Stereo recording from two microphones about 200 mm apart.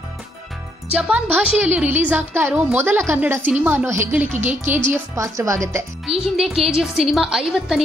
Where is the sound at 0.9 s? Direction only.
5° right (ahead or behind).